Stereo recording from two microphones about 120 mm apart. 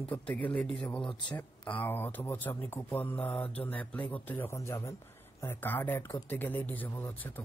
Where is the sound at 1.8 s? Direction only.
15° left (ahead or behind).